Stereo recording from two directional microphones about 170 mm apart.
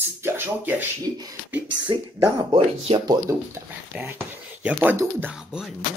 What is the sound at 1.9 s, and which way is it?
Speech, 30° right (ahead or behind).